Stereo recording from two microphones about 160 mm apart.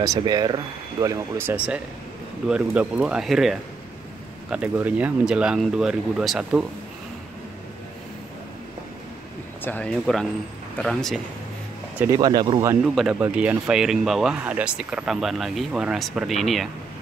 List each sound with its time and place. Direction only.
0.0 s speech: 25° right (ahead or behind)
1.0 s speech: 15° right (ahead or behind)
9.7 s speech: 5° left (ahead or behind)
12.0 s speech: 20° right (ahead or behind)
12.8 s speech: 5° right (ahead or behind)